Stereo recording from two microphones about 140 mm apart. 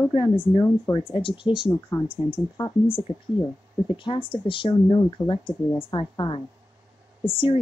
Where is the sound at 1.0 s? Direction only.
40° left (ahead or behind).